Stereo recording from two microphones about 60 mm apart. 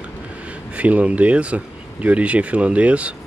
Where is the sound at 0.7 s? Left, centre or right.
Right.